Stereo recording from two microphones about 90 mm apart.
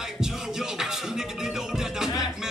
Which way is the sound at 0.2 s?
5° right (ahead or behind).